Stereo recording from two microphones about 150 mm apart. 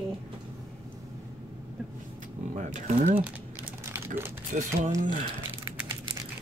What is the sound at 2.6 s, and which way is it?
Speech, 55° right (ahead or behind).